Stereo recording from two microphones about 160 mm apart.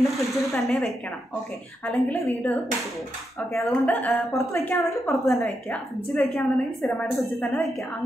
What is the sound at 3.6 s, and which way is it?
Speech, 10° left (ahead or behind).